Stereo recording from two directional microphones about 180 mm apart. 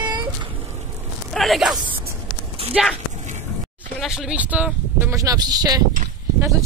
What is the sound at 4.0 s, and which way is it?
Speech, 5° right (ahead or behind).